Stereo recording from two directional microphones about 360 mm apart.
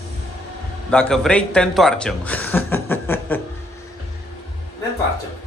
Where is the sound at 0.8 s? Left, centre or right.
Centre.